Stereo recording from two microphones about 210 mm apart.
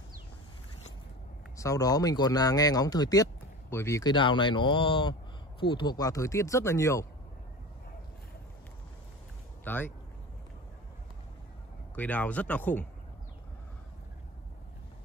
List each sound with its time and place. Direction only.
1.6 s speech: 15° left (ahead or behind)
9.7 s speech: 10° left (ahead or behind)
11.9 s speech: 10° left (ahead or behind)